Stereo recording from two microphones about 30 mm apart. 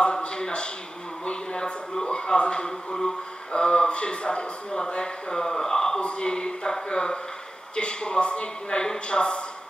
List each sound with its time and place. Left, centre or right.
0.0 s a sound: left
2.0 s a man's voice: left
3.5 s a man's voice: left
5.9 s a man's voice: left
8.7 s a man's voice: left